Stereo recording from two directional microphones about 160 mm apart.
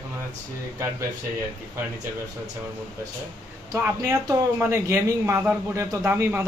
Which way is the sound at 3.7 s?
15° right (ahead or behind).